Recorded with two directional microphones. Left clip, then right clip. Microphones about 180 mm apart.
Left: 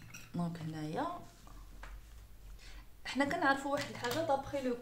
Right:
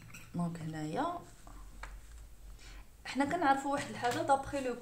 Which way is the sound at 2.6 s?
10° right (ahead or behind).